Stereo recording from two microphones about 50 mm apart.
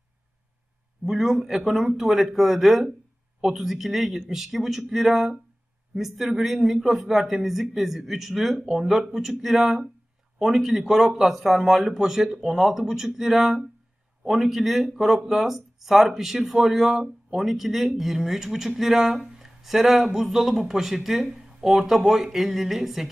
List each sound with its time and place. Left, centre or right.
1.0 s speech: centre